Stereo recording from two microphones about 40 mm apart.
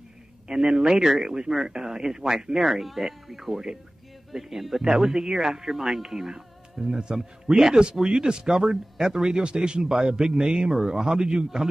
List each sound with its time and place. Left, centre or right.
0.5 s speech: centre